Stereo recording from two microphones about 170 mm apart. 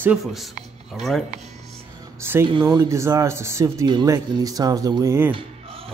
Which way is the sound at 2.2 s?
15° right (ahead or behind).